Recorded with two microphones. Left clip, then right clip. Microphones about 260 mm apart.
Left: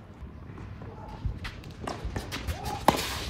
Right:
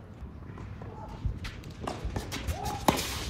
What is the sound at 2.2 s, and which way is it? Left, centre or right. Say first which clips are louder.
Music: even; left.